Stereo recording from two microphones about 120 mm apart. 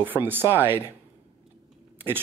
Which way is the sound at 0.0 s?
15° right (ahead or behind).